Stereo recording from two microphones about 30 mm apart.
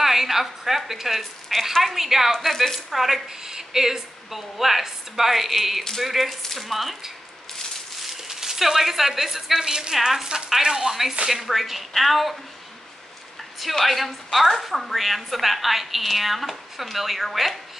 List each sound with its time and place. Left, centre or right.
0.0 s a woman's voice: centre
2.3 s a woman's voice: centre
2.9 s a woman's voice: centre
3.3 s a woman's voice: centre
6.2 s a woman's voice: centre
8.0 s sizzle: centre
9.3 s a woman's voice: centre
9.9 s a woman's voice: centre
10.5 s a woman's voice: right
10.9 s a woman's voice: centre
13.8 s a woman's voice: centre